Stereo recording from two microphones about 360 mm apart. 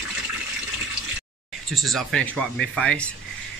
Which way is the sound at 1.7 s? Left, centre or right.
Centre.